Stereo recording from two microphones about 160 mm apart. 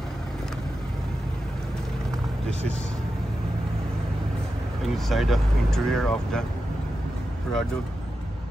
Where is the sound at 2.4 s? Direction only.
40° right (ahead or behind).